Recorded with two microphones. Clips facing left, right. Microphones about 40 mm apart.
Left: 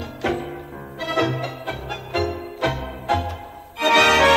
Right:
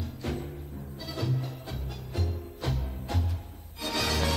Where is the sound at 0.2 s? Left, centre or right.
Left.